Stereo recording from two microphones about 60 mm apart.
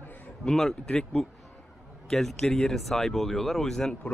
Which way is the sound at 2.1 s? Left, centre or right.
Centre.